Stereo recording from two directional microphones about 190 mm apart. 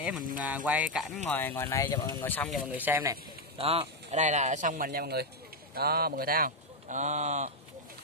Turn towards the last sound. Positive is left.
turn(degrees=-40)  # may be behind; listen again after turning